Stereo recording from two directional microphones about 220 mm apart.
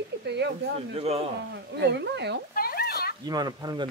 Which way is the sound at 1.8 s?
50° right (ahead or behind).